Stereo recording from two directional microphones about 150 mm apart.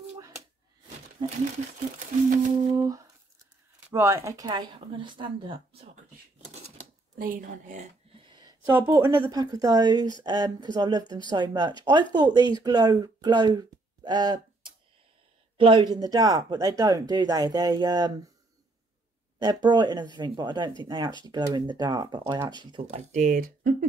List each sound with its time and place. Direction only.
1.2 s speech: 30° right (ahead or behind)
3.9 s speech: 20° right (ahead or behind); by 5.9 s 35° right (ahead or behind)
7.2 s a woman's voice: 65° right (ahead or behind)
8.3 s a sound: 30° right (ahead or behind)
8.6 s speech: 15° right (ahead or behind)
9.1 s speech: 25° right (ahead or behind)
19.4 s speech: 30° right (ahead or behind)
22.8 s speech: 45° right (ahead or behind)
23.2 s a woman's voice: 65° right (ahead or behind)